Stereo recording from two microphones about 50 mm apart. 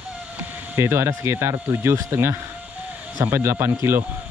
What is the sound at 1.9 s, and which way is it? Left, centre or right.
Speech, right.